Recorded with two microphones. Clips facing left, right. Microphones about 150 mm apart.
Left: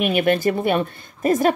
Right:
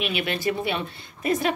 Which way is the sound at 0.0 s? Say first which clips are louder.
Left 8 dB; 50° left (ahead or behind).